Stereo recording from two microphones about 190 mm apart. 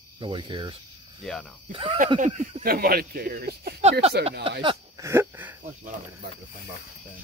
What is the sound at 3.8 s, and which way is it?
Speech, 35° right (ahead or behind).